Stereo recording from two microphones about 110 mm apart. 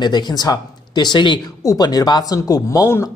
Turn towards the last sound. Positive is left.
turn(degrees=25)  # may be behind; listen again after turning